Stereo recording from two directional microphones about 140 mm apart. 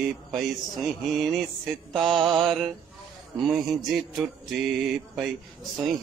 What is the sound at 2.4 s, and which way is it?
Mantra, centre (ahead or behind).